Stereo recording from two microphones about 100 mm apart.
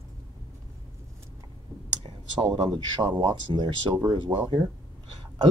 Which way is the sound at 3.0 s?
45° right (ahead or behind).